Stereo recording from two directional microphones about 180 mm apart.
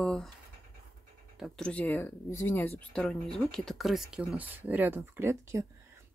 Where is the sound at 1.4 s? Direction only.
5° left (ahead or behind); by 5.7 s 15° right (ahead or behind).